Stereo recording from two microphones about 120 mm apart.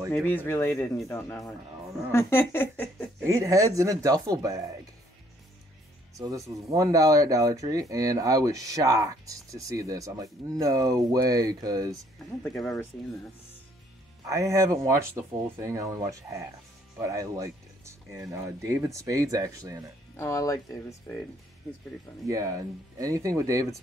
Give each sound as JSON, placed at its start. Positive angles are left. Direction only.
{"t": 0.1, "sound": "speech", "side_deg": 15}
{"t": 3.3, "sound": "speech", "side_deg": -25}
{"t": 6.1, "sound": "speech", "side_deg": -25}
{"t": 12.5, "sound": "speech", "side_deg": 0}
{"t": 14.2, "sound": "speech", "side_deg": -25}
{"t": 20.2, "sound": "speech", "side_deg": 25}
{"t": 22.3, "sound": "speech", "side_deg": -25}